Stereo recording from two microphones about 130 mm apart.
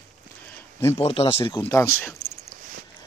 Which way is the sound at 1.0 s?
50° left (ahead or behind).